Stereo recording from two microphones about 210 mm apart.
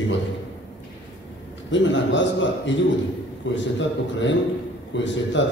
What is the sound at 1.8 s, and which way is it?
A man's voice, 60° left (ahead or behind).